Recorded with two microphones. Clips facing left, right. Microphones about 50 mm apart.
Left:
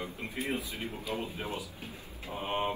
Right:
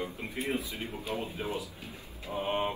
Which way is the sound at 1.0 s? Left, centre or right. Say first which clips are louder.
Right 1 dB; right.